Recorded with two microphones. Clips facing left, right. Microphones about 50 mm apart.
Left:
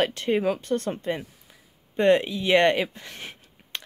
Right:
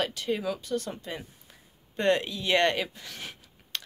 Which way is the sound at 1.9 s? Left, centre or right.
Centre.